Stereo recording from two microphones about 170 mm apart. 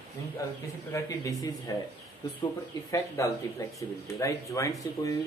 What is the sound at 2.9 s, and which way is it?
Speech, 20° left (ahead or behind).